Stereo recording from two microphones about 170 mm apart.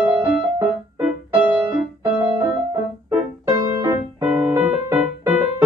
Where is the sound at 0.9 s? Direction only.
10° right (ahead or behind).